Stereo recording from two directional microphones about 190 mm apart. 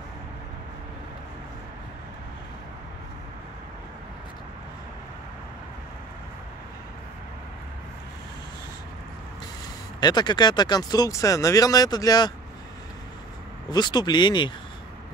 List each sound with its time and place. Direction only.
9.9 s speech: 20° left (ahead or behind)
13.7 s speech: 20° left (ahead or behind)